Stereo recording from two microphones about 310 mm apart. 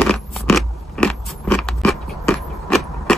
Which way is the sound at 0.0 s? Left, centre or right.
Centre.